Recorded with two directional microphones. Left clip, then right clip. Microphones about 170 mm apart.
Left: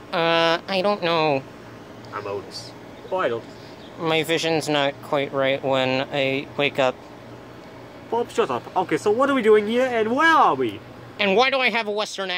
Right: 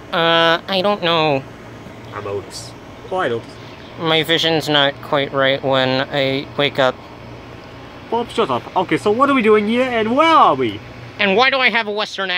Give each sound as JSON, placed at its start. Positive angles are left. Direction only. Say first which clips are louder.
{"t": 0.1, "sound": "speech", "louder": "right 5 dB", "side_deg": 5}
{"t": 4.0, "sound": "speech", "louder": "right 6 dB", "side_deg": 5}
{"t": 8.1, "sound": "speech", "louder": "right 4 dB", "side_deg": -40}
{"t": 11.1, "sound": "speech", "louder": "right 5 dB", "side_deg": 10}